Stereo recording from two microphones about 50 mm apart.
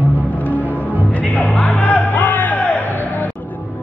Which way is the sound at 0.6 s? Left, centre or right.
Left.